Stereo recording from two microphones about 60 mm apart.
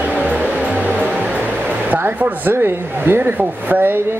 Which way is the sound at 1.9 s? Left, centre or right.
Right.